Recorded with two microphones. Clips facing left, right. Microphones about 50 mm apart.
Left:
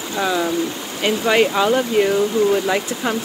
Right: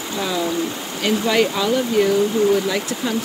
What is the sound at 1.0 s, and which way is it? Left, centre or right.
Speech, left.